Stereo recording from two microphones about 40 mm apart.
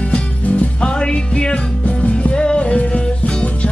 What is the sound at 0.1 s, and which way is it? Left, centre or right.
Music, left.